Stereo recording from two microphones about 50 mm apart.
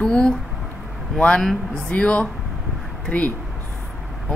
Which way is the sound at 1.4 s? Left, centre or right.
Centre.